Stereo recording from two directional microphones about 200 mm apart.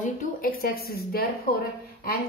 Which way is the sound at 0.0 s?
40° left (ahead or behind).